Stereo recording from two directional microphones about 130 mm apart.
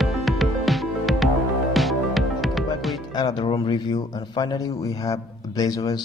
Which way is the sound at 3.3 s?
45° left (ahead or behind).